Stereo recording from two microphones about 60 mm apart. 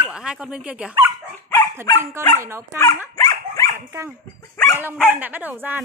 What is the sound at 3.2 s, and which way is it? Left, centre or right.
Dog, left.